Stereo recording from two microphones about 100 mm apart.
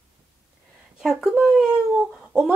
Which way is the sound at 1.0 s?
5° right (ahead or behind).